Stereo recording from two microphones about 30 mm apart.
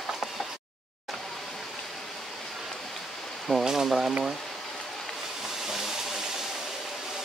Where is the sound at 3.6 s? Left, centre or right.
Centre.